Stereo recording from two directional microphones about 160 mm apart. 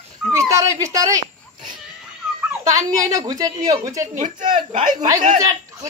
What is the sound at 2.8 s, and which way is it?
A woman's voice, 20° right (ahead or behind).